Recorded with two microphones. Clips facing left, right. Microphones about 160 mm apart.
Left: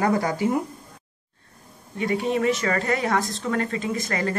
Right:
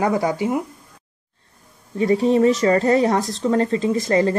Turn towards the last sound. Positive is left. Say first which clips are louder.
# right 8 dB
turn(degrees=-30)  # may be behind; listen again after turning